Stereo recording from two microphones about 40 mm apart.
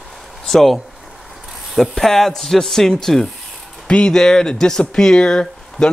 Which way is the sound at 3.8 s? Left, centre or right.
Left.